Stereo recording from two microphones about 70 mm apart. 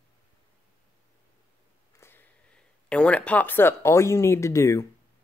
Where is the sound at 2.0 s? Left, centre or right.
Left.